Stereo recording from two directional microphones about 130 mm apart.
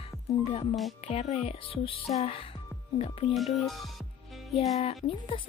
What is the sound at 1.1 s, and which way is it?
Speech, 50° left (ahead or behind).